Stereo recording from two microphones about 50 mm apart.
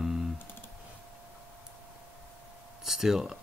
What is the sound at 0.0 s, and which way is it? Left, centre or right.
Computer keyboard, centre.